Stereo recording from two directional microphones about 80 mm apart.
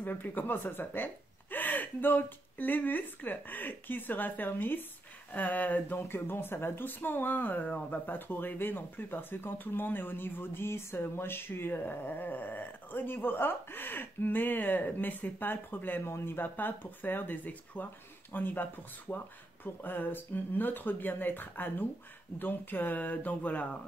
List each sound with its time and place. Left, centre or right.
0.0 s speech: left